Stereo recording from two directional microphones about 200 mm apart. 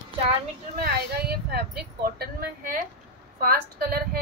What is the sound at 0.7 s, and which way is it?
Speech, 50° right (ahead or behind).